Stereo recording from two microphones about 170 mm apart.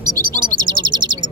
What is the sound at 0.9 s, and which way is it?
Bird, 25° right (ahead or behind).